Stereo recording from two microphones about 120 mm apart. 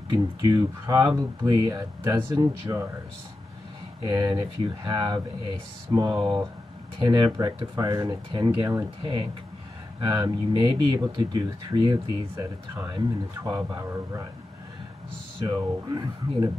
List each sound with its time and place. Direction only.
0.1 s speech: 35° right (ahead or behind)
4.1 s speech: 30° right (ahead or behind)
15.4 s speech: 35° right (ahead or behind)